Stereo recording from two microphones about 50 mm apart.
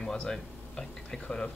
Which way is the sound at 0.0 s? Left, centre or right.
Centre.